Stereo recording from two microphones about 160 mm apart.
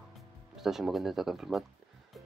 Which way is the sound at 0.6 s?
Centre (ahead or behind).